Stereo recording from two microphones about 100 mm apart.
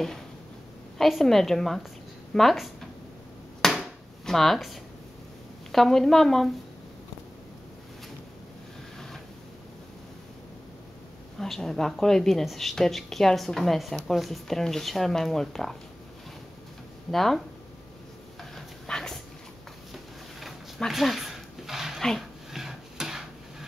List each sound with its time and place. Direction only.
0.9 s a woman's voice: centre (ahead or behind)
3.6 s a sound: 5° left (ahead or behind)
5.7 s a woman's voice: 5° left (ahead or behind)
11.3 s a woman's voice: 5° left (ahead or behind)
17.1 s a woman's voice: 5° left (ahead or behind)
18.4 s dog: 5° left (ahead or behind)
19.9 s a sound: centre (ahead or behind)